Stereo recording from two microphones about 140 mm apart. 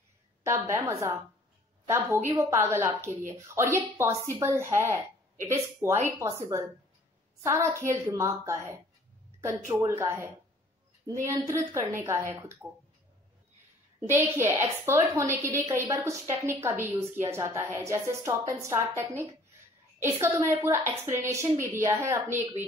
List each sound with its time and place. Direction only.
0.4 s a woman's voice: 20° right (ahead or behind)
2.3 s a woman's voice: 20° right (ahead or behind)
14.0 s a woman's voice: 15° right (ahead or behind)